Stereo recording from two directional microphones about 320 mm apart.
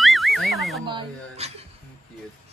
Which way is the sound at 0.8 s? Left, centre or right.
Centre.